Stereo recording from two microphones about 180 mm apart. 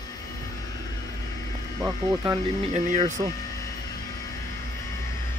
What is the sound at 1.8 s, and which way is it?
Speech, 25° right (ahead or behind).